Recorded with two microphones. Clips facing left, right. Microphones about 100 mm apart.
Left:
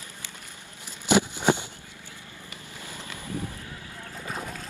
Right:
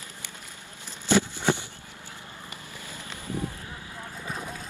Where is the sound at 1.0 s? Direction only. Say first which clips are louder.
Left 2 dB; 15° left (ahead or behind).